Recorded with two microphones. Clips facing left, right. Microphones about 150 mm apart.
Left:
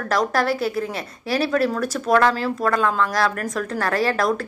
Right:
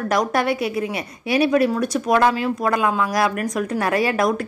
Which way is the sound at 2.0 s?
15° right (ahead or behind).